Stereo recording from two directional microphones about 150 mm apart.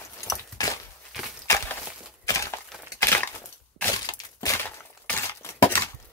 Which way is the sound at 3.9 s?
25° left (ahead or behind).